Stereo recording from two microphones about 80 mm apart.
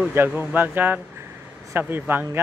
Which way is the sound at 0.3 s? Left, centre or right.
Right.